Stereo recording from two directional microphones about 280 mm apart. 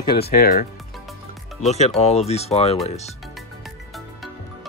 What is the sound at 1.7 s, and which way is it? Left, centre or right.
Speech, left.